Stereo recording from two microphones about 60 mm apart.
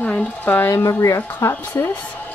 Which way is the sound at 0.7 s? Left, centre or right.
Left.